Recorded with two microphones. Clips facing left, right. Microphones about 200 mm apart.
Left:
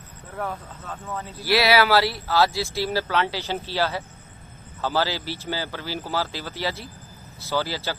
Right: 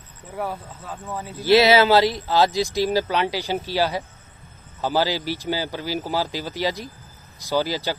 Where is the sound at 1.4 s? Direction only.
20° right (ahead or behind).